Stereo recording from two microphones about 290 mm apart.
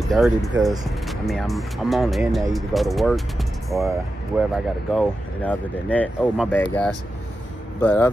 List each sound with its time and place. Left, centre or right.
0.1 s speech: centre
4.9 s speech: centre